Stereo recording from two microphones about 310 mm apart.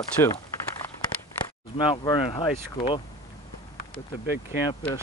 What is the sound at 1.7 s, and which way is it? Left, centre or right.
Speech, centre.